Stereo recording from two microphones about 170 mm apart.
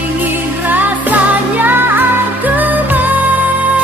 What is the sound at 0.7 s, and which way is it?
Music, 10° right (ahead or behind).